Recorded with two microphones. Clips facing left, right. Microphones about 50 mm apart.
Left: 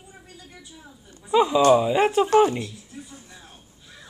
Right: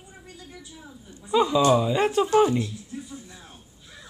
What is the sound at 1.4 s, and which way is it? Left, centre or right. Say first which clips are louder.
Speech: left 3 dB; centre.